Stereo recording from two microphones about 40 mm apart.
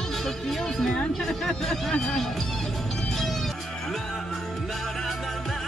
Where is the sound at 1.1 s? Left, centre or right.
Centre.